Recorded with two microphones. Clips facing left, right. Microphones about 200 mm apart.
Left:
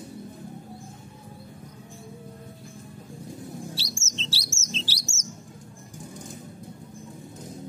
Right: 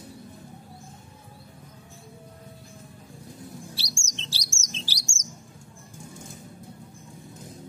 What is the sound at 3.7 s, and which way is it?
Chirp, 15° right (ahead or behind).